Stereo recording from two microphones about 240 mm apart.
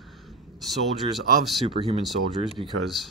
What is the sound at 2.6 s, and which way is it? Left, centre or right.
Speech, centre.